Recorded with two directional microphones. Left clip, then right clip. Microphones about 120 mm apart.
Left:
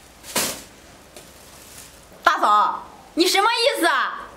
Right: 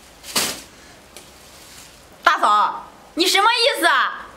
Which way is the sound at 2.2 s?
Centre (ahead or behind).